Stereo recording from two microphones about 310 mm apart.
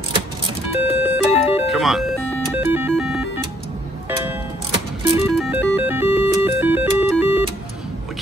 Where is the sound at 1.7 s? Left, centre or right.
Centre.